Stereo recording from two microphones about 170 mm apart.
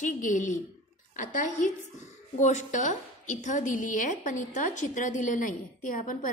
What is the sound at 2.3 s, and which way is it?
A woman's voice, 45° left (ahead or behind).